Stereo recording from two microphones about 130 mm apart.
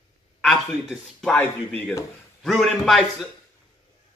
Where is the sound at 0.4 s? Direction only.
5° left (ahead or behind).